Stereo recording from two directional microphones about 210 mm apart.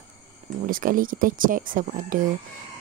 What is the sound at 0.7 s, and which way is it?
Speech, 40° right (ahead or behind).